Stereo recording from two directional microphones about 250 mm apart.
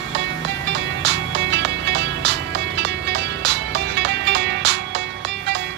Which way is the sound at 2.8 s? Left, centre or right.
Right.